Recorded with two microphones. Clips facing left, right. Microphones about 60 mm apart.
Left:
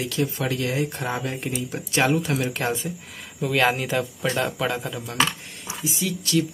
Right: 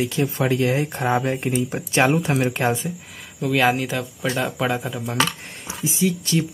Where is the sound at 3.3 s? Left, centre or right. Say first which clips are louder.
Right 2 dB; centre.